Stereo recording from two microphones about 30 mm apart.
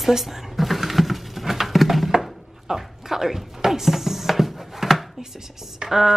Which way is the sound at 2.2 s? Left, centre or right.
Centre.